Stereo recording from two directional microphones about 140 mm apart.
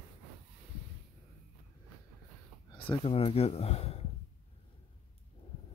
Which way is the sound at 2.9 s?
45° left (ahead or behind).